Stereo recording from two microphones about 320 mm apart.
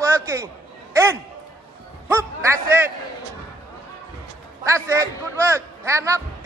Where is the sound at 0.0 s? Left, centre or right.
Centre.